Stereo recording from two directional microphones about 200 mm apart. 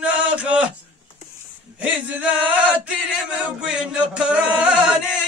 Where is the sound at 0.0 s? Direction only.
5° right (ahead or behind).